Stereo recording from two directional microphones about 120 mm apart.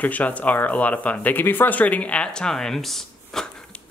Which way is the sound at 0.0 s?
10° left (ahead or behind).